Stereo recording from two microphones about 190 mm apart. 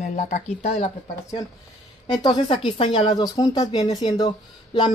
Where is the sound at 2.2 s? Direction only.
25° left (ahead or behind).